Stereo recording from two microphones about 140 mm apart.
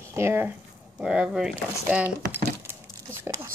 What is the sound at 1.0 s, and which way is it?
Speech, 5° right (ahead or behind).